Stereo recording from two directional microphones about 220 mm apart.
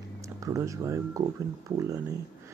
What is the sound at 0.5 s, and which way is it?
Speech, 15° right (ahead or behind).